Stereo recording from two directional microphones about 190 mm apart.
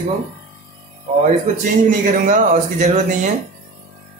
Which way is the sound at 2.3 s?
40° right (ahead or behind).